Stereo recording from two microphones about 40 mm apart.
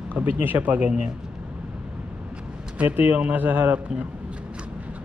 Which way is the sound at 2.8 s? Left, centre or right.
Right.